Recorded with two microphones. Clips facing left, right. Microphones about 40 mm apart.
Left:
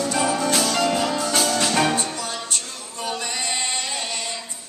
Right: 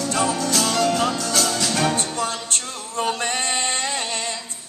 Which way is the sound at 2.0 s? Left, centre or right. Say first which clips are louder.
Right 3 dB; right.